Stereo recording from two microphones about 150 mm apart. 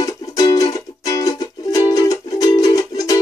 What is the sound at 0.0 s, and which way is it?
Music, 25° left (ahead or behind).